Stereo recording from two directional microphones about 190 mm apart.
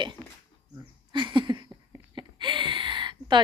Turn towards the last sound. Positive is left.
turn(degrees=-25)  # may be behind; listen again after turning